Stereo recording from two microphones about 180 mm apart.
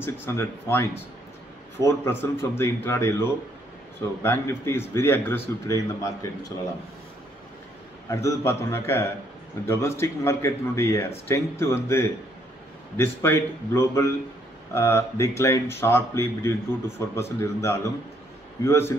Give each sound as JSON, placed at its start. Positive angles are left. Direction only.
{"t": 0.0, "sound": "a man's voice", "side_deg": 15}
{"t": 8.1, "sound": "a man's voice", "side_deg": 15}